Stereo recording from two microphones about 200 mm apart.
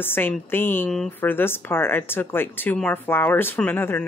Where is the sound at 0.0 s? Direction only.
10° left (ahead or behind).